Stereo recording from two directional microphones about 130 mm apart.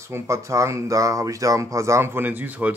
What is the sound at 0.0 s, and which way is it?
Speech, 20° right (ahead or behind).